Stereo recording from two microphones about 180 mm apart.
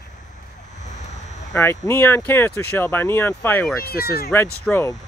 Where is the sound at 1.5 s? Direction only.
15° left (ahead or behind).